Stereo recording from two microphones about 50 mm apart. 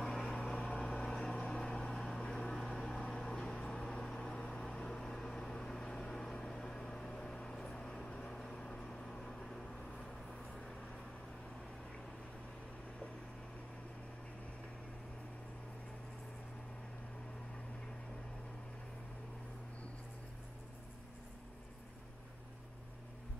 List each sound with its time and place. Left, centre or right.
0.4 s vehicle: centre